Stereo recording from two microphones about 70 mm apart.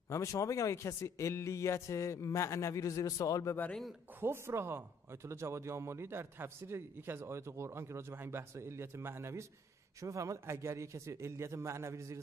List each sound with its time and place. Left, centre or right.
0.1 s a man's voice: left
4.2 s a man's voice: right